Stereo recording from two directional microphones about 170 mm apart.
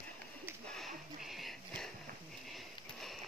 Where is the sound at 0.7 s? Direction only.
Centre (ahead or behind).